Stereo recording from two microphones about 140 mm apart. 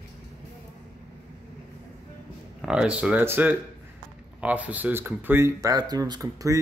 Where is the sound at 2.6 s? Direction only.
5° right (ahead or behind); by 6.6 s 25° right (ahead or behind).